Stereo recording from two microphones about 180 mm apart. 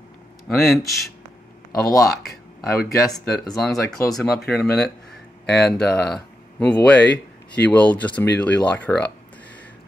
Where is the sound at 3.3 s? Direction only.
Centre (ahead or behind).